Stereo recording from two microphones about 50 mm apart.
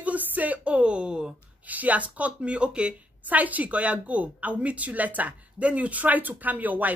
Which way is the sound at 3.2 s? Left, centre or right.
Right.